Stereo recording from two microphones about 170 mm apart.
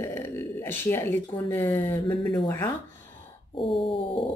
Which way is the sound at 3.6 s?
30° left (ahead or behind).